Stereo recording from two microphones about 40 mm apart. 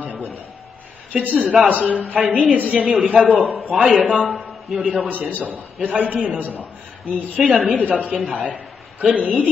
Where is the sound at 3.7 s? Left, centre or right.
Centre.